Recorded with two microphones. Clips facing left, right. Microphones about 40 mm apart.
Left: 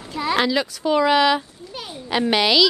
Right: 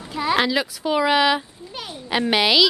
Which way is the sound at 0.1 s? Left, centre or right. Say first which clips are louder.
Even; centre.